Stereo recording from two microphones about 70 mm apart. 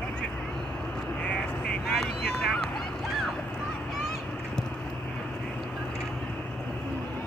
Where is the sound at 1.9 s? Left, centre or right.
Centre.